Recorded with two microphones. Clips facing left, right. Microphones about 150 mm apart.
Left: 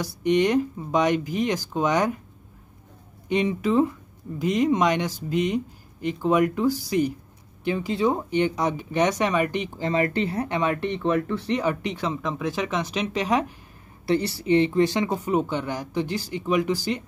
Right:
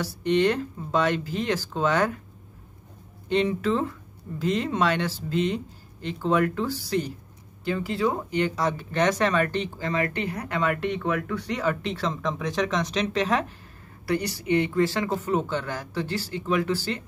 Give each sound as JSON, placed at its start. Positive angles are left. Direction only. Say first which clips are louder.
{"t": 0.0, "sound": "speech", "louder": "left 1 dB", "side_deg": 15}
{"t": 3.3, "sound": "speech", "louder": "even", "side_deg": 10}
{"t": 9.8, "sound": "speech", "louder": "left 7 dB", "side_deg": 25}
{"t": 14.0, "sound": "speech", "louder": "left 3 dB", "side_deg": 30}